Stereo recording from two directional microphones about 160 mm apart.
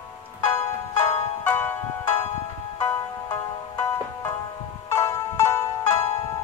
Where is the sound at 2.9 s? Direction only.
25° left (ahead or behind).